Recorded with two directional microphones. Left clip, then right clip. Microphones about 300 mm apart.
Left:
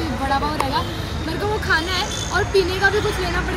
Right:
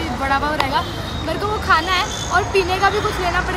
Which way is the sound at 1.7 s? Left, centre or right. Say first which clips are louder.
Right 6 dB; centre.